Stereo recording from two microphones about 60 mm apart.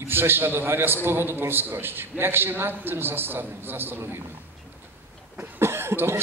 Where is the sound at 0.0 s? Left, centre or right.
Right.